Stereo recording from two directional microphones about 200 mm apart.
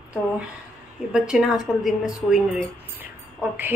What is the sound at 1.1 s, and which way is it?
Speech, 5° right (ahead or behind).